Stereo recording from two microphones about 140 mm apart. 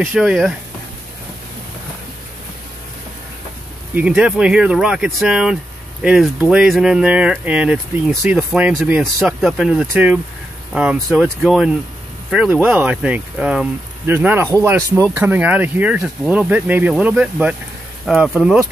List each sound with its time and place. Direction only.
0.1 s speech: centre (ahead or behind)
3.9 s speech: 10° right (ahead or behind)